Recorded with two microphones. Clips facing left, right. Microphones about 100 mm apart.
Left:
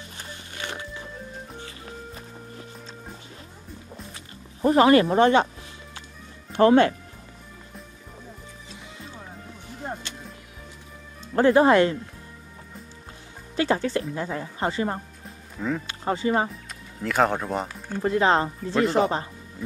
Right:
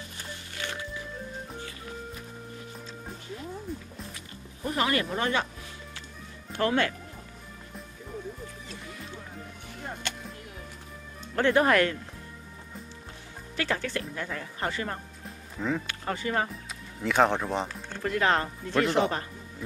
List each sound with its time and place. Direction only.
0.6 s music: 25° left (ahead or behind)
4.6 s speech: 35° left (ahead or behind)
6.5 s speech: 30° left (ahead or behind)
10.1 s music: 60° right (ahead or behind)
11.3 s speech: 30° left (ahead or behind)
13.6 s speech: 25° left (ahead or behind)
15.2 s music: centre (ahead or behind)
15.9 s speech: 25° left (ahead or behind)
17.0 s speech: centre (ahead or behind)
18.0 s speech: 25° left (ahead or behind)
18.8 s speech: 5° left (ahead or behind)